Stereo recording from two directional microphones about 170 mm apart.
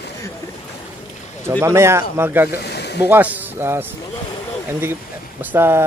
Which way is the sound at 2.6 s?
75° left (ahead or behind).